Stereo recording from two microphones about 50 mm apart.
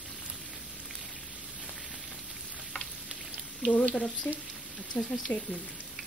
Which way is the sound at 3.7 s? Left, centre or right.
Left.